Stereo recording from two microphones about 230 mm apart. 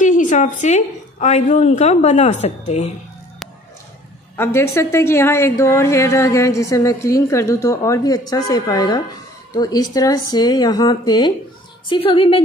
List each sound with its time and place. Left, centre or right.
0.0 s a woman's voice: left
4.4 s a woman's voice: centre